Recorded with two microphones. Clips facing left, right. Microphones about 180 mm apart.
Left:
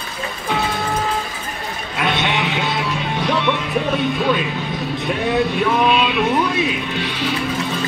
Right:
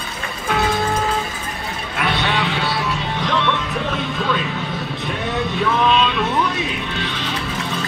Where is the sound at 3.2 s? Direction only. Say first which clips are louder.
Left 2 dB; 10° left (ahead or behind).